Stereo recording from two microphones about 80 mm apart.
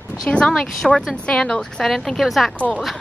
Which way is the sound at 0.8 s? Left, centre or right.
Centre.